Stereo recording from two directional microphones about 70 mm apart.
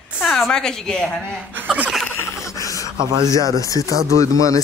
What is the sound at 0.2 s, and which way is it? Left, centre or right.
A woman's voice, centre.